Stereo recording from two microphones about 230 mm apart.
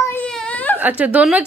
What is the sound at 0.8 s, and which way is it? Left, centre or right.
Speech, centre.